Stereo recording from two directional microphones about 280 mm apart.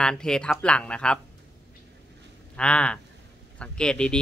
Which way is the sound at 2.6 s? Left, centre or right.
Centre.